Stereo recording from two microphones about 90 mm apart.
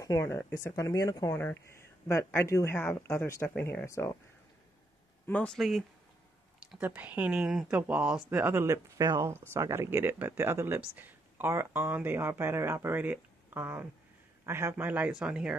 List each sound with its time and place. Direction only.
0.0 s speech: 40° left (ahead or behind)
1.3 s speech: 30° left (ahead or behind)
5.2 s speech: 15° left (ahead or behind)
5.5 s speech: centre (ahead or behind)
6.8 s speech: 20° right (ahead or behind)
7.3 s speech: 5° right (ahead or behind); by 8.7 s 25° right (ahead or behind)
8.7 s speech: 40° right (ahead or behind)
9.5 s speech: 30° right (ahead or behind); by 15.5 s 10° right (ahead or behind)